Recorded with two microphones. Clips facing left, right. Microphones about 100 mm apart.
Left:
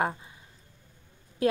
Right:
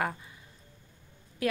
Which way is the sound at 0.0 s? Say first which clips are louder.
Left 3 dB; 25° left (ahead or behind).